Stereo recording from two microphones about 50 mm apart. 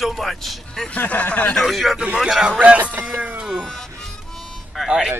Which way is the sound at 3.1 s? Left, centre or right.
Right.